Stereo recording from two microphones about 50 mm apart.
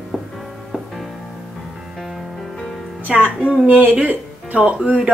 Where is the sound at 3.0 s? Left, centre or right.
Right.